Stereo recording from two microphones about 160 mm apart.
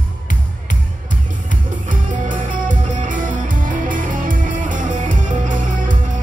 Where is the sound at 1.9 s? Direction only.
55° right (ahead or behind).